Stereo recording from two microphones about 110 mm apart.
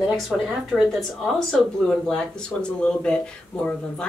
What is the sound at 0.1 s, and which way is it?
Speech, 10° right (ahead or behind).